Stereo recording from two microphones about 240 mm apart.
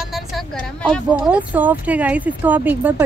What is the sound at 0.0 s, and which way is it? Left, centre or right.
Speech, centre.